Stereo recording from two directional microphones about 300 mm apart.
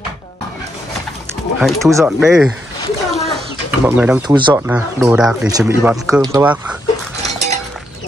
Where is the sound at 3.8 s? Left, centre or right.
Centre.